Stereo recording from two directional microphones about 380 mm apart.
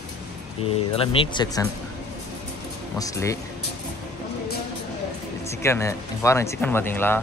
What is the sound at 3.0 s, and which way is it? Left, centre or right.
Speech, centre.